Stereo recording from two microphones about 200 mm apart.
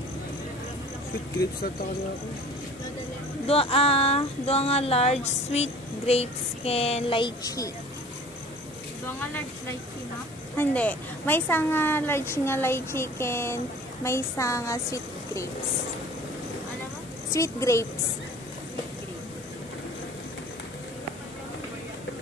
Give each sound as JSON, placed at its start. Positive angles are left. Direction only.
{"t": 3.4, "sound": "child singing", "side_deg": 30}
{"t": 9.2, "sound": "a woman's voice", "side_deg": 10}
{"t": 17.3, "sound": "a woman's voice", "side_deg": 15}